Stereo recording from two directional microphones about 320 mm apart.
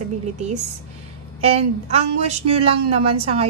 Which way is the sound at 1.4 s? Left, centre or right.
Centre.